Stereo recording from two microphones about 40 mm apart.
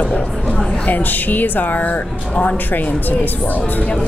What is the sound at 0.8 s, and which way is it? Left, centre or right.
Speech, left.